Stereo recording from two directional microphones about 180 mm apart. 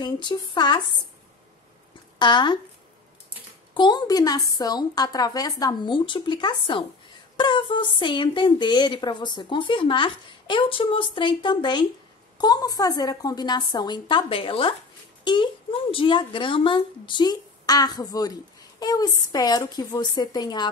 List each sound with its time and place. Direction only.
0.0 s speech: 25° left (ahead or behind)
2.1 s speech: 25° left (ahead or behind)
3.7 s speech: 25° left (ahead or behind)